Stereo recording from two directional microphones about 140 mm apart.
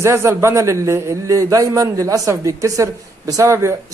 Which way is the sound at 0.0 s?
20° right (ahead or behind).